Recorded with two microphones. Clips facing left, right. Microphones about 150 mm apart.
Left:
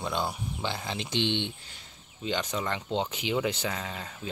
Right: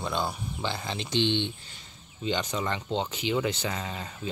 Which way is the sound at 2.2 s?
5° left (ahead or behind).